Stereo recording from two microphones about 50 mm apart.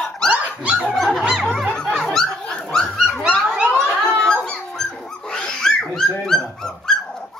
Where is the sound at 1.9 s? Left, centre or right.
Centre.